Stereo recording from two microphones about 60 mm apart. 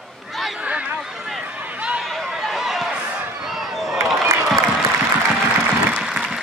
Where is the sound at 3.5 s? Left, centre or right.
Centre.